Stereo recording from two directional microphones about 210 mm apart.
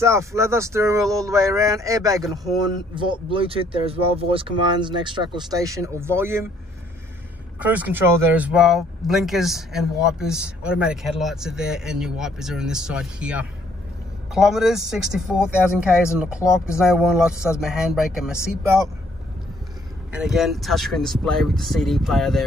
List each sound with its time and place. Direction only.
0.0 s speech: 15° right (ahead or behind)
7.5 s speech: 5° right (ahead or behind)
20.1 s speech: 5° right (ahead or behind)